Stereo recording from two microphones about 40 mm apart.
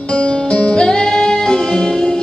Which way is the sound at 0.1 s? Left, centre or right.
Left.